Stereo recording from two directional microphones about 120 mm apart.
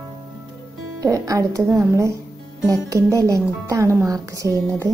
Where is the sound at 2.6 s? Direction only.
30° right (ahead or behind).